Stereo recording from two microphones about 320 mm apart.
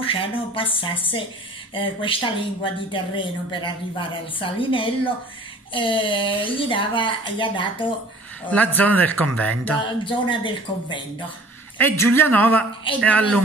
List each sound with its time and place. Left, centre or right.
0.0 s speech: centre
12.9 s speech: centre